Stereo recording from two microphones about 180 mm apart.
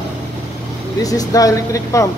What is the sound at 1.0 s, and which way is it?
Speech, 20° left (ahead or behind).